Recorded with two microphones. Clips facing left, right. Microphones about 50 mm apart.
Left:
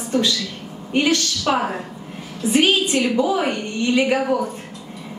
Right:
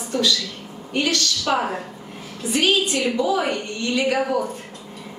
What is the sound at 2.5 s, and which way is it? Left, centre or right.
A woman's voice, left.